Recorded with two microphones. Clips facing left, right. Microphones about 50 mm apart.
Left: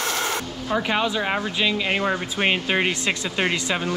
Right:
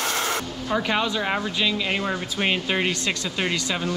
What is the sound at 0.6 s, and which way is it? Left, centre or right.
Speech, centre.